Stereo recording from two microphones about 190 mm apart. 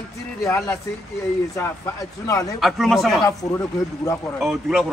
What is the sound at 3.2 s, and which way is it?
Speech, 15° left (ahead or behind).